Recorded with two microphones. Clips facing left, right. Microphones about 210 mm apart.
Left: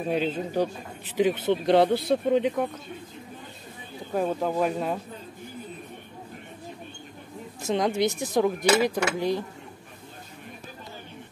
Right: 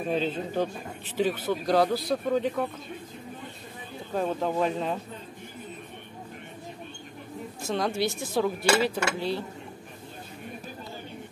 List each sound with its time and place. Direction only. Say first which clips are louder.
0.1 s speech: left 2 dB; 10° left (ahead or behind)
4.1 s speech: left 2 dB; 10° left (ahead or behind)
7.6 s speech: left 4 dB; 20° left (ahead or behind)